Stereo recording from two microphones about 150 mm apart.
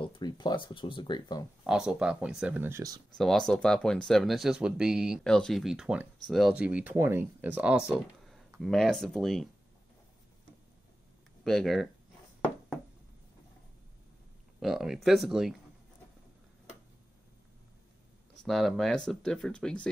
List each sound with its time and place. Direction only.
0.0 s speech: 30° left (ahead or behind)
1.6 s speech: 5° right (ahead or behind)
3.2 s speech: 5° left (ahead or behind)
8.5 s speech: 5° left (ahead or behind)
11.4 s speech: centre (ahead or behind)
14.6 s speech: 5° right (ahead or behind)
18.4 s speech: centre (ahead or behind)